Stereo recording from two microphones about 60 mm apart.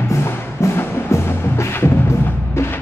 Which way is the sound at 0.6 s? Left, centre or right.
Left.